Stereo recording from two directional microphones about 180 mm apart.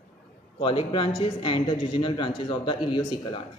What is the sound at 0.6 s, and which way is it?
A man's voice, 25° left (ahead or behind).